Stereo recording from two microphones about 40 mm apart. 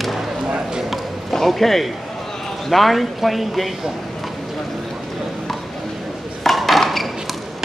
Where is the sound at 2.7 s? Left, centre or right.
Centre.